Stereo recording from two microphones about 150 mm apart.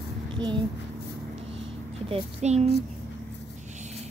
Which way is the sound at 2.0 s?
45° right (ahead or behind).